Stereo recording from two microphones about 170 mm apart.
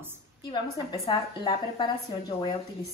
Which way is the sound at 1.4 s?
25° left (ahead or behind).